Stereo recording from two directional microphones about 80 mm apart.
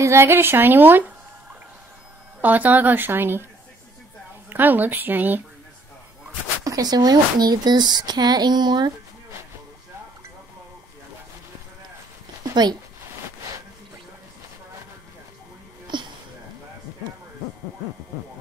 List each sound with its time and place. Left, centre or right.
0.0 s a woman's voice: right
2.4 s a woman's voice: right
4.5 s a woman's voice: right
6.6 s speech: right
15.9 s a sound: right